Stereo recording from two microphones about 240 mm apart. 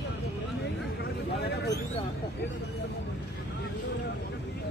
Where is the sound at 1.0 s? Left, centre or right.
Left.